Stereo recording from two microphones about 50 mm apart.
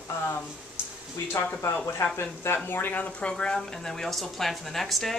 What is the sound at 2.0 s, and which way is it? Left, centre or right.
Speech, left.